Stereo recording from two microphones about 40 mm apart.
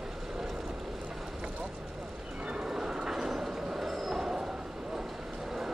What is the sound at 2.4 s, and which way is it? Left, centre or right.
Train, right.